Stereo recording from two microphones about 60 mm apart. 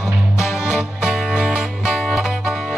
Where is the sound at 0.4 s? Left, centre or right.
Left.